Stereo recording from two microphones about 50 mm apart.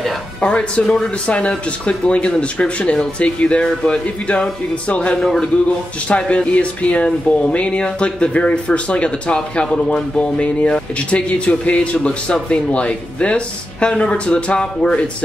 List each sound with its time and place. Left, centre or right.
0.4 s speech: left
5.2 s a man's voice: centre
6.0 s speech: left